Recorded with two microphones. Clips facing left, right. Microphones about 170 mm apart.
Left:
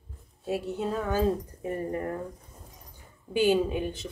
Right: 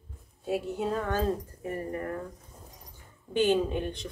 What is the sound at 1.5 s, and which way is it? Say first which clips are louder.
Speech: left 3 dB; 25° left (ahead or behind).